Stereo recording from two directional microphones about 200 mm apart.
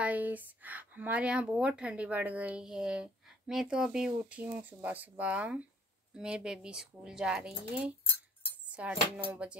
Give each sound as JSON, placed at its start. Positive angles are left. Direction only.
{"t": 0.0, "sound": "speech", "side_deg": -10}